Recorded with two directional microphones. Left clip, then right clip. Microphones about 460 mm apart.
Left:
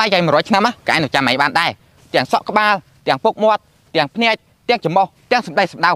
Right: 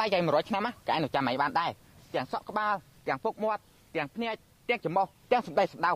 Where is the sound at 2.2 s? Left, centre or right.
Left.